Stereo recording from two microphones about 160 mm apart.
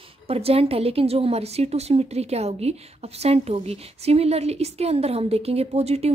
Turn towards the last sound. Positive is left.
turn(degrees=-40)  # may be behind; listen again after turning